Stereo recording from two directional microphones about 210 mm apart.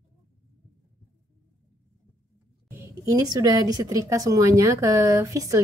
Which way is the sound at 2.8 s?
15° right (ahead or behind).